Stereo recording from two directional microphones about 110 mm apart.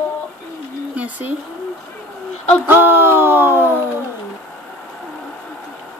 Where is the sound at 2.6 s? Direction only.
20° right (ahead or behind).